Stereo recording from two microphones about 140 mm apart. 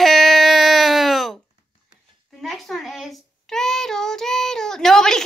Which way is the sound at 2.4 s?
Centre (ahead or behind).